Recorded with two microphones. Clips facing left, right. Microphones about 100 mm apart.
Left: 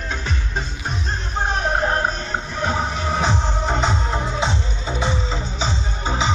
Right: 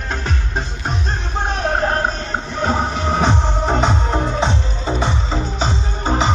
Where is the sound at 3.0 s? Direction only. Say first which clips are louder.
Right 4 dB; 40° right (ahead or behind).